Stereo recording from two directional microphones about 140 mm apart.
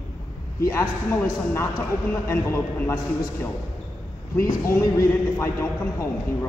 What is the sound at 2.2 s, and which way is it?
A man's voice, 20° left (ahead or behind).